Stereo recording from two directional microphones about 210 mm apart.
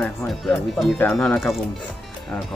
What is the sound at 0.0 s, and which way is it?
Speech, 5° left (ahead or behind).